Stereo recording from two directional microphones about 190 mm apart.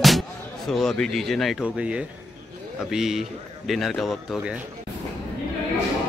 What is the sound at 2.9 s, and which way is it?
Speech, 5° right (ahead or behind).